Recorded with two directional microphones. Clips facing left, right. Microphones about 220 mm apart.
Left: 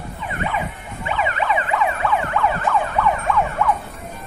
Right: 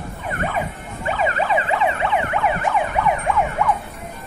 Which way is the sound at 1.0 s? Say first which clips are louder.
Right 1 dB; 40° right (ahead or behind).